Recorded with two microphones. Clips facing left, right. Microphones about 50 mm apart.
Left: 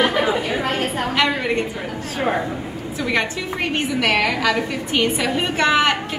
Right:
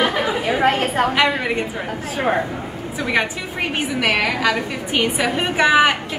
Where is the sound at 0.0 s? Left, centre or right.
Centre.